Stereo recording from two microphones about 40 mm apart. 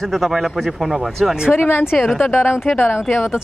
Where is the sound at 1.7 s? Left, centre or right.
Left.